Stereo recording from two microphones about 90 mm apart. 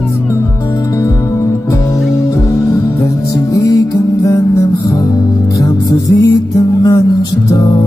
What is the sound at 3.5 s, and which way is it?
Music, 40° left (ahead or behind).